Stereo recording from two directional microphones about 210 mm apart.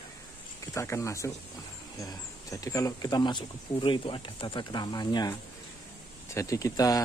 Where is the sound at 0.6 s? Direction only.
15° left (ahead or behind).